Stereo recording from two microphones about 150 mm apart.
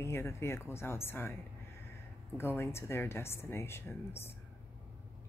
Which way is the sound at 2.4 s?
15° left (ahead or behind).